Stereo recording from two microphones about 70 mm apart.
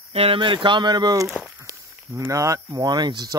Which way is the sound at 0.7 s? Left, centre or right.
Right.